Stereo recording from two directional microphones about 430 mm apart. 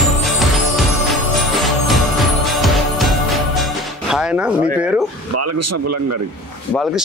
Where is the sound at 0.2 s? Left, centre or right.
Centre.